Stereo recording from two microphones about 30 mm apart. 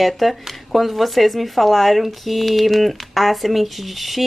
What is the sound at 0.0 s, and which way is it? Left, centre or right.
Speech, centre.